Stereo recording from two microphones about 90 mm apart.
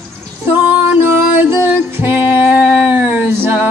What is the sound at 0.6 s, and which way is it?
Music, 20° right (ahead or behind).